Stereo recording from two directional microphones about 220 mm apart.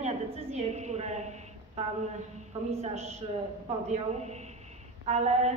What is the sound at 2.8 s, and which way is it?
A woman's voice, 30° right (ahead or behind).